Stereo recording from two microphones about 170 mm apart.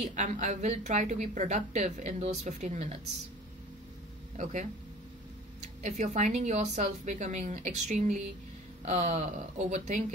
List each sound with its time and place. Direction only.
0.0 s a woman's voice: 45° right (ahead or behind)
4.4 s a woman's voice: 45° right (ahead or behind)
5.8 s a woman's voice: 45° right (ahead or behind)